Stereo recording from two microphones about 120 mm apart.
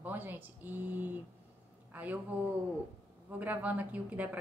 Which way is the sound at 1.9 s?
15° right (ahead or behind).